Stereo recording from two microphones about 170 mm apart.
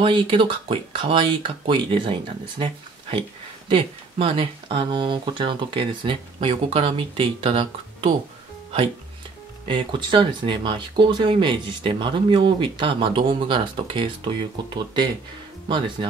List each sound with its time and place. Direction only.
0.0 s speech: 30° right (ahead or behind)
9.7 s speech: 25° right (ahead or behind)